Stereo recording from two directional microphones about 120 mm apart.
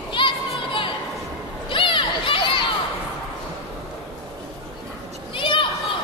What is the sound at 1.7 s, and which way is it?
Crowd, 45° left (ahead or behind).